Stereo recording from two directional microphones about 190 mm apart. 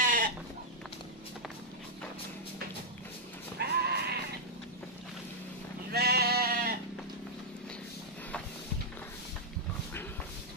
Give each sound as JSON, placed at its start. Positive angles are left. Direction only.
{"t": 0.0, "sound": "goat", "side_deg": -45}
{"t": 3.5, "sound": "sheep", "side_deg": -55}
{"t": 5.9, "sound": "sheep", "side_deg": -55}